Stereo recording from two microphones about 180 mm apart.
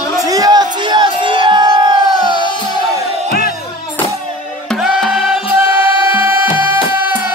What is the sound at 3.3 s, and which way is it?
Music, 55° left (ahead or behind).